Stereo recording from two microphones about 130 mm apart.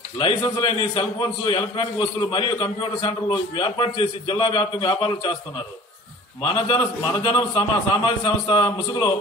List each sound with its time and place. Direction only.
0.2 s a man's voice: 35° left (ahead or behind)
6.4 s a man's voice: 40° left (ahead or behind)